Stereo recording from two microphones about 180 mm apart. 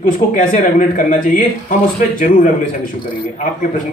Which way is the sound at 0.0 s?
45° left (ahead or behind).